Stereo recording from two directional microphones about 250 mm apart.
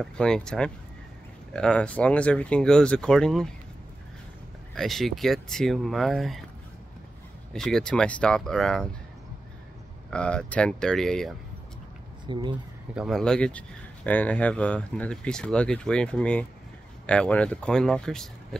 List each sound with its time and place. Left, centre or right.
0.0 s speech: centre
4.7 s speech: centre
7.5 s speech: centre
10.1 s speech: centre
12.3 s speech: centre
12.9 s speech: centre